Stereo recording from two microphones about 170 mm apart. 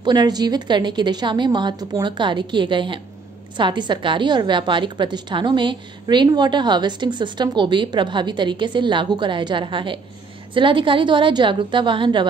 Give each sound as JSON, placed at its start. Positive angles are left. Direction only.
{"t": 0.0, "sound": "a woman's voice", "side_deg": -25}